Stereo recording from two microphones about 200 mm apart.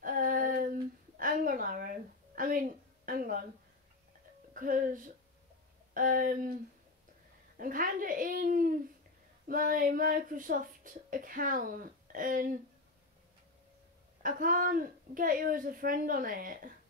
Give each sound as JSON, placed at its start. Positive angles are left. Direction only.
{"t": 0.0, "sound": "female singing", "side_deg": -45}
{"t": 1.1, "sound": "a sound", "side_deg": -45}
{"t": 4.6, "sound": "speech", "side_deg": -45}
{"t": 5.9, "sound": "a sound", "side_deg": -45}
{"t": 7.5, "sound": "babbling", "side_deg": -45}
{"t": 9.5, "sound": "speech", "side_deg": -45}
{"t": 14.2, "sound": "speech", "side_deg": -45}